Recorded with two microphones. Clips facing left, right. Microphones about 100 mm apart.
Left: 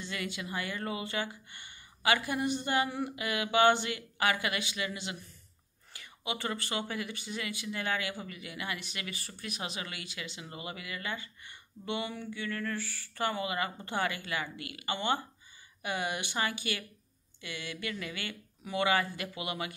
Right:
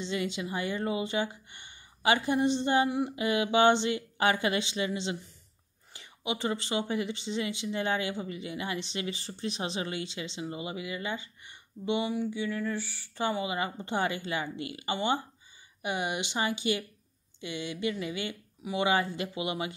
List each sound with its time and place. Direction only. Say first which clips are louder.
0.0 s speech: right 6 dB; 25° right (ahead or behind)